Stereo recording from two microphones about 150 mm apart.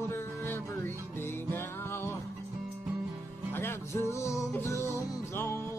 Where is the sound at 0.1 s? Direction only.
15° left (ahead or behind).